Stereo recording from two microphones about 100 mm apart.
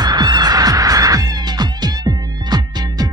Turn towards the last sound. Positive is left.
turn(degrees=-40)  # may be behind; listen again after turning